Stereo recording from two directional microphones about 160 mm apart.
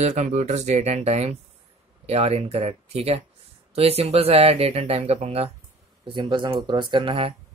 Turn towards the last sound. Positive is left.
turn(degrees=-35)  # may be behind; listen again after turning